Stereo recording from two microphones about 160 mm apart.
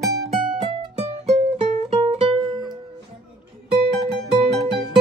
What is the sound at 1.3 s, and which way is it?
Music, 40° right (ahead or behind).